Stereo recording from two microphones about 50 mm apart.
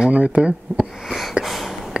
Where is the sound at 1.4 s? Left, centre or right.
Centre.